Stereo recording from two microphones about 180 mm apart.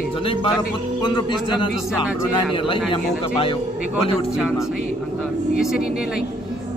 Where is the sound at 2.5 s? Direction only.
30° left (ahead or behind).